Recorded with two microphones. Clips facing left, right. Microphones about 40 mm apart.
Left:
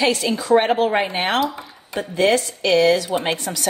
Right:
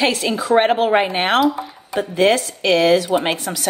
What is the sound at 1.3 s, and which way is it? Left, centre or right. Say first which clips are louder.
Speech: right 5 dB; centre.